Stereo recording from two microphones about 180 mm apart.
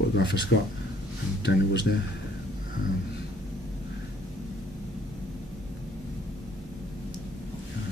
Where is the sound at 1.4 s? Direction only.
75° left (ahead or behind).